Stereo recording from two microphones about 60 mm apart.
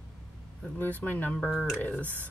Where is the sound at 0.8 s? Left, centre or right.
Left.